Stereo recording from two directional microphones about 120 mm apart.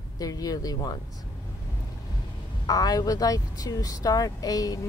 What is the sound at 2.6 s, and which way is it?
Speech, 30° left (ahead or behind).